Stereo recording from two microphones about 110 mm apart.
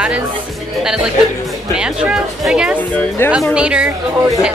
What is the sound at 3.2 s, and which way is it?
Speech, 20° left (ahead or behind).